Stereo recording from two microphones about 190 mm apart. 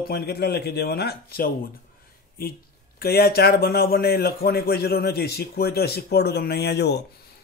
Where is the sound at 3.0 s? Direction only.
55° left (ahead or behind).